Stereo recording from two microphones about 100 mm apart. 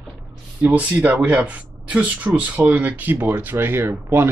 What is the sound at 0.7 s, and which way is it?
Speech, 15° right (ahead or behind).